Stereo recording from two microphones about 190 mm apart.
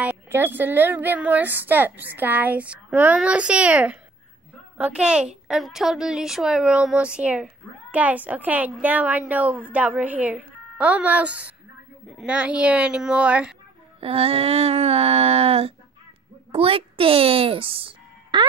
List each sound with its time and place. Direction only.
0.0 s a woman's voice: 10° right (ahead or behind)
14.0 s a sound: 30° right (ahead or behind)
16.5 s a child's voice: 30° right (ahead or behind)